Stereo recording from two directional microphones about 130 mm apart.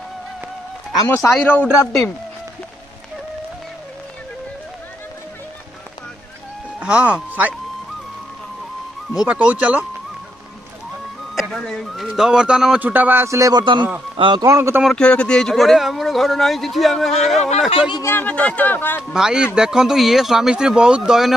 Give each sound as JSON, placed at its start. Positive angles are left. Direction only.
{"t": 0.9, "sound": "a man's voice", "side_deg": 20}
{"t": 6.8, "sound": "speech", "side_deg": -10}
{"t": 9.1, "sound": "a man's voice", "side_deg": -5}
{"t": 11.3, "sound": "a man's voice", "side_deg": 0}
{"t": 14.4, "sound": "speech", "side_deg": -20}
{"t": 14.8, "sound": "speech", "side_deg": 5}
{"t": 17.6, "sound": "speech", "side_deg": 35}
{"t": 18.0, "sound": "speech", "side_deg": 15}
{"t": 19.1, "sound": "speech", "side_deg": -5}